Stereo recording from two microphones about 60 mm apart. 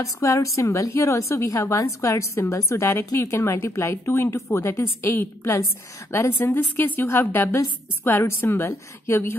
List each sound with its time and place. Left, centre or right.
0.0 s a woman's voice: left